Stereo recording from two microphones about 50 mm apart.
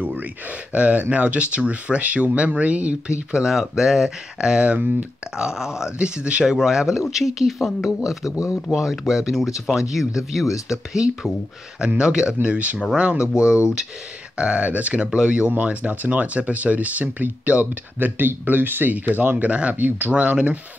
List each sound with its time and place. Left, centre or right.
0.0 s a sound: right
0.7 s speech: right; by 4.6 s centre
4.6 s speech: right
5.4 s speech: centre
6.4 s speech: centre
14.3 s speech: right
15.0 s speech: centre